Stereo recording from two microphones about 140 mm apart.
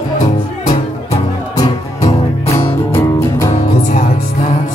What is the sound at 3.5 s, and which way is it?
Music, 60° left (ahead or behind).